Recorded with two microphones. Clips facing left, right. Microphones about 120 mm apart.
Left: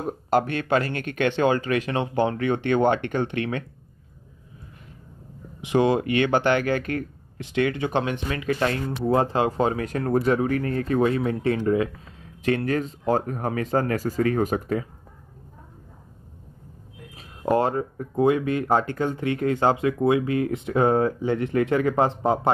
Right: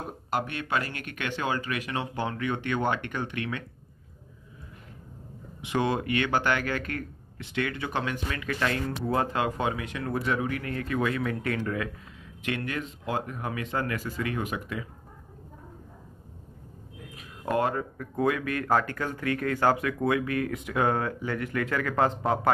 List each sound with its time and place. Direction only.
0.3 s speech: 35° left (ahead or behind)
5.6 s speech: 25° left (ahead or behind)
12.4 s speech: 40° left (ahead or behind)
17.5 s speech: 30° left (ahead or behind)